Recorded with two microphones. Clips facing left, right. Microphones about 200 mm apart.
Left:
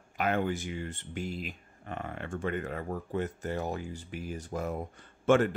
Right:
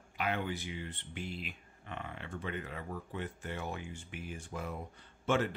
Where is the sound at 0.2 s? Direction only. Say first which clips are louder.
Left 6 dB; 45° left (ahead or behind).